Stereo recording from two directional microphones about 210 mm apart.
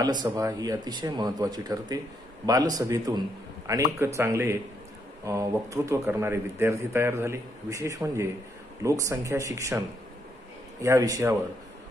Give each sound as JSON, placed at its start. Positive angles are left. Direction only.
{"t": 0.0, "sound": "a man's voice", "side_deg": -20}